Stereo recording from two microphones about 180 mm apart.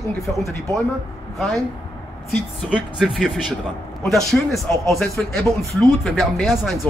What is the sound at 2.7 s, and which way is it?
A man's voice, 5° right (ahead or behind).